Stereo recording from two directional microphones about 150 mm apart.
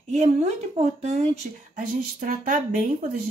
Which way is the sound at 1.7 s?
65° right (ahead or behind).